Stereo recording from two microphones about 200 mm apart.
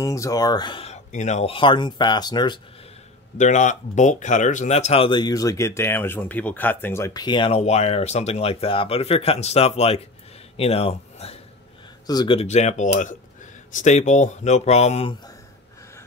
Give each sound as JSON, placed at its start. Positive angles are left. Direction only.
{"t": 0.0, "sound": "speech", "side_deg": 15}
{"t": 3.3, "sound": "speech", "side_deg": 35}